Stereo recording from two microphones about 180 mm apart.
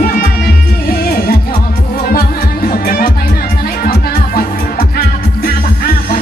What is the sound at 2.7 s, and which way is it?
Music, 50° left (ahead or behind).